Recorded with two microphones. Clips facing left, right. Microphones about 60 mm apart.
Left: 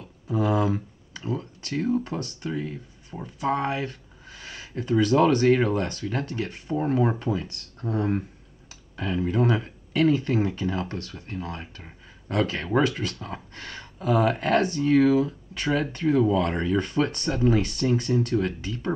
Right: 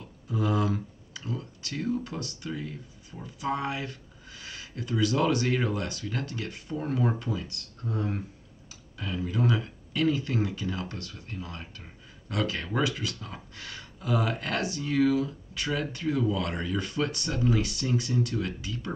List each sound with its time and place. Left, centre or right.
0.3 s speech: left
11.0 s speech: left